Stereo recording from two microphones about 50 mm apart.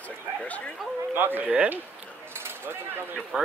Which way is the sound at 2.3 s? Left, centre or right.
Right.